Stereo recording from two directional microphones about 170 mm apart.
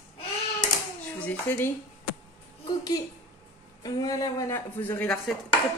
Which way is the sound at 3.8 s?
20° left (ahead or behind).